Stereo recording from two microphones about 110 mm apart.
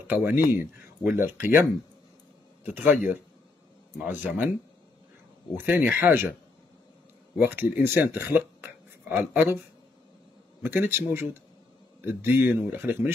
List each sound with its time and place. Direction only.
0.0 s speech: 20° right (ahead or behind)
5.6 s speech: 20° right (ahead or behind)
7.3 s speech: 20° right (ahead or behind)
10.6 s speech: 20° right (ahead or behind)